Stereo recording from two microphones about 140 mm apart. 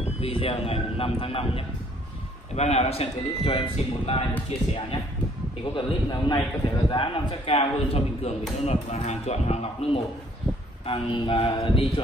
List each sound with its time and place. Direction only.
0.2 s a man's voice: 40° left (ahead or behind)